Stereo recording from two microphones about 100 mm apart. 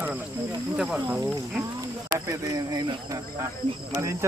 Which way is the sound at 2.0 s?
30° right (ahead or behind).